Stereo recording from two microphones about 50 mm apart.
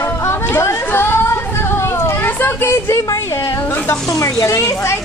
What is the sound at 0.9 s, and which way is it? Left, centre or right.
Speech, left.